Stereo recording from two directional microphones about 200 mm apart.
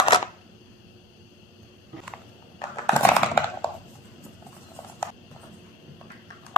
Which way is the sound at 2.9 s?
10° left (ahead or behind).